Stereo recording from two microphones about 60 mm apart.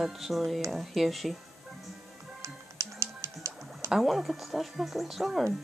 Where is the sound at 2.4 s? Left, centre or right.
Right.